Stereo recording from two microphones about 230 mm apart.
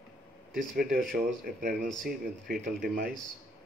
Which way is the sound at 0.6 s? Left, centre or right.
Right.